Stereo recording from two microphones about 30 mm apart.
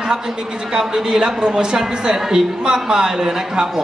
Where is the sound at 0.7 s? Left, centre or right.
Right.